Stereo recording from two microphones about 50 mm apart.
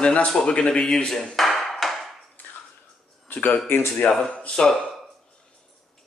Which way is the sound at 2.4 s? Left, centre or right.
Left.